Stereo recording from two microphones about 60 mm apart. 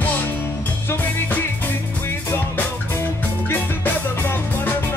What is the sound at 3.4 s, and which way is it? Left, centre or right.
Music, left.